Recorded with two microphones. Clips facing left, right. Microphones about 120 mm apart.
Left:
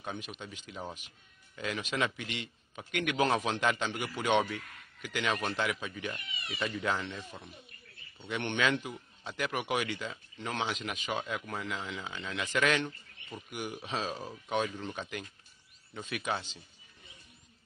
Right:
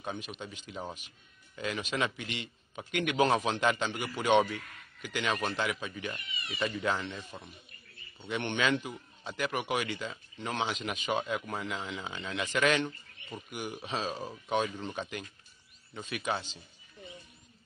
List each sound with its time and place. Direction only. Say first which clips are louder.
0.4 s speech: right 2 dB; 5° right (ahead or behind)
2.0 s a man's voice: left 2 dB; 5° right (ahead or behind)